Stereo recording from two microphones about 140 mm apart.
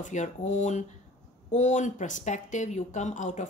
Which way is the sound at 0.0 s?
60° left (ahead or behind).